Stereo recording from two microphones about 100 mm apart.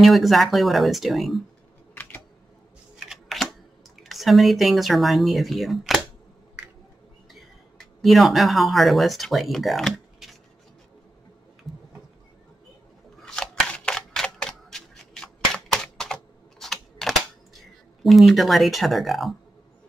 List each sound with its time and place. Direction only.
0.0 s speech: centre (ahead or behind)
3.1 s camera: centre (ahead or behind)
4.0 s speech: centre (ahead or behind)
7.3 s speech: centre (ahead or behind)
11.7 s a sound: centre (ahead or behind)
13.2 s single-lens reflex camera: 10° left (ahead or behind)
17.6 s speech: centre (ahead or behind)